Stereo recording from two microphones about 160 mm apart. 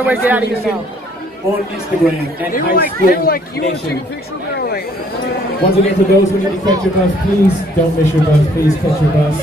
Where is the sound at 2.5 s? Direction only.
65° left (ahead or behind).